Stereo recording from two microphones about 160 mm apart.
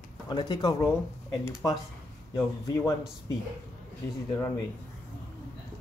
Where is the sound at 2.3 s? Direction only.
20° left (ahead or behind).